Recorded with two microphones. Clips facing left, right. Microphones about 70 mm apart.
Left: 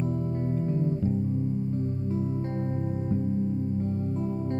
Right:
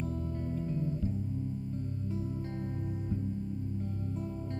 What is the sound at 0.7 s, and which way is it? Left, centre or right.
Music, left.